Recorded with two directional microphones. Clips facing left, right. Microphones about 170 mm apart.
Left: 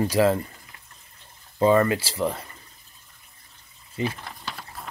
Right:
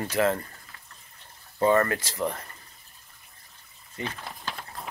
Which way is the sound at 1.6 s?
10° left (ahead or behind).